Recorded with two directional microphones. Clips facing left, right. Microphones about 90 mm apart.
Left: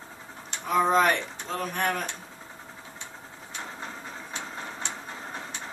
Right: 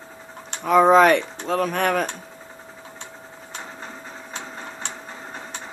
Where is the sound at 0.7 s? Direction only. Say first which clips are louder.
Right 8 dB; 90° right.